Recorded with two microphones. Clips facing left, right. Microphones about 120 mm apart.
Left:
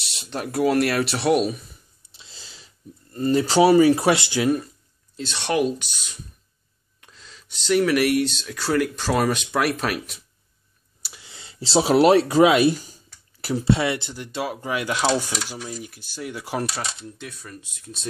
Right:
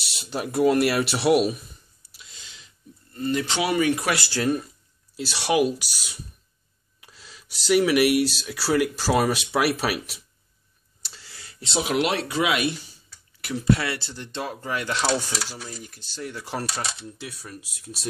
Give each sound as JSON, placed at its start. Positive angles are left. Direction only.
{"t": 0.0, "sound": "speech", "side_deg": 0}
{"t": 2.0, "sound": "a sound", "side_deg": 30}
{"t": 5.1, "sound": "speech", "side_deg": -5}
{"t": 11.0, "sound": "a sound", "side_deg": 15}
{"t": 13.7, "sound": "speech", "side_deg": 20}
{"t": 14.2, "sound": "speech", "side_deg": 10}
{"t": 17.2, "sound": "speech", "side_deg": -5}